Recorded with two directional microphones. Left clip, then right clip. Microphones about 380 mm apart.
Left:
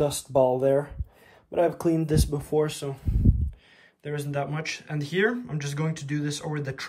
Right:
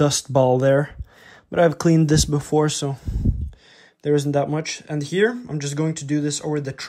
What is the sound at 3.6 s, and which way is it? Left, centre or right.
Speech, centre.